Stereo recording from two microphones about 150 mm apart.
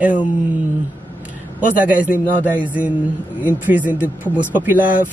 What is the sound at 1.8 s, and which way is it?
Speech, 10° right (ahead or behind).